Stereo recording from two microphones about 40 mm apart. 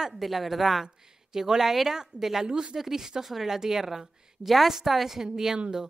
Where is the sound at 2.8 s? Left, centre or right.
Centre.